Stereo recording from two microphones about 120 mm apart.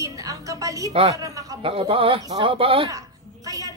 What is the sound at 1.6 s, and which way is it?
Speech, 50° right (ahead or behind).